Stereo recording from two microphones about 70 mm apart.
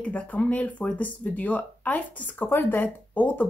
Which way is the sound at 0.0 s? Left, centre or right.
Centre.